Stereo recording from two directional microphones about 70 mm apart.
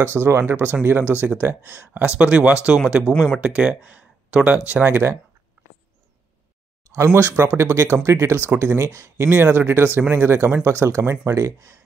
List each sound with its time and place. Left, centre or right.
0.0 s speech: right
2.0 s speech: centre
3.1 s speech: centre
3.4 s speech: centre
4.8 s speech: right
7.2 s speech: right